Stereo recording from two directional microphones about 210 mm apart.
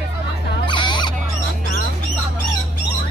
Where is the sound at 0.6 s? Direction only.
20° left (ahead or behind).